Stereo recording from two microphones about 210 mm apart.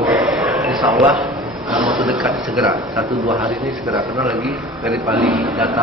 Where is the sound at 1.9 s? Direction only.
Centre (ahead or behind).